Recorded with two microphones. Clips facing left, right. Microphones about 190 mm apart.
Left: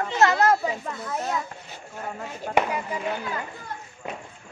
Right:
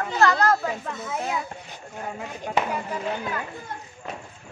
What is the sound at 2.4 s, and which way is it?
Speech, 10° left (ahead or behind).